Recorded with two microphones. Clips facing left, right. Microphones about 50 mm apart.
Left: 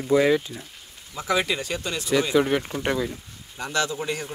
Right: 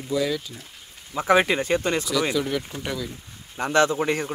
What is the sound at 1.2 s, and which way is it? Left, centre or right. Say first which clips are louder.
Speech: right 5 dB; right.